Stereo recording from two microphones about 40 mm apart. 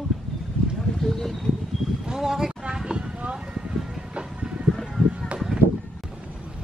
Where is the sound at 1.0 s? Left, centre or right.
Centre.